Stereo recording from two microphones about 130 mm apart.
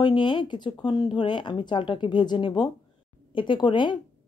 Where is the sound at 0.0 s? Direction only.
35° left (ahead or behind).